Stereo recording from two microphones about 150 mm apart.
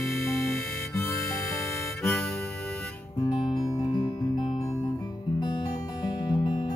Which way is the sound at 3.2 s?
30° left (ahead or behind).